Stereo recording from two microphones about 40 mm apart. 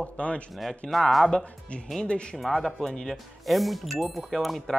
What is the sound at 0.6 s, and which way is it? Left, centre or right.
Speech, centre.